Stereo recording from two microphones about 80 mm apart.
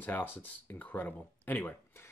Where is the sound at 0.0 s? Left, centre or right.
Left.